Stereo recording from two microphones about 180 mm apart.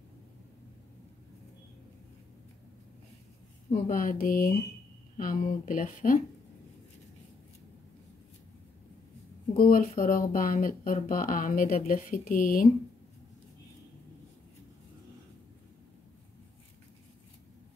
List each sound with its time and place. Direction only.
3.9 s speech: 50° left (ahead or behind)
9.6 s speech: 50° left (ahead or behind)